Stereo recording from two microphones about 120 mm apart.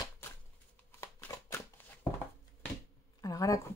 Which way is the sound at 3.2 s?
30° left (ahead or behind).